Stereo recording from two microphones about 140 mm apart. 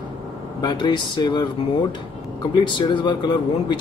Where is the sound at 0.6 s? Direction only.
30° left (ahead or behind).